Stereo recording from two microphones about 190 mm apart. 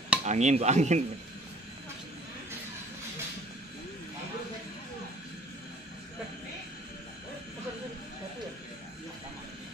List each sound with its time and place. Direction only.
0.2 s speech: 40° right (ahead or behind)